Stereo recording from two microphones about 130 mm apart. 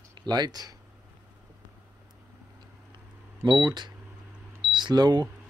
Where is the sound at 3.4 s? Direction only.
35° right (ahead or behind).